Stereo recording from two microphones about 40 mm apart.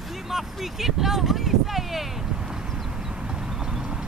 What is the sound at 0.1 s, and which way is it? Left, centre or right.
Speech, centre.